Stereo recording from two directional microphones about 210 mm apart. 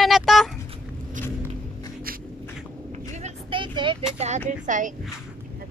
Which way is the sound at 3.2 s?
30° right (ahead or behind).